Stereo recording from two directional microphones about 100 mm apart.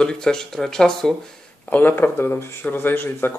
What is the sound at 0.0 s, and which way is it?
Speech, 5° left (ahead or behind).